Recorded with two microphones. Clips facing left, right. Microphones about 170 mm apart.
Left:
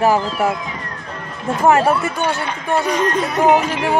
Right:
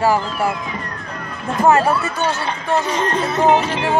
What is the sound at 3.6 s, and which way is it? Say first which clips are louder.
Speech: left 1 dB; 35° right (ahead or behind).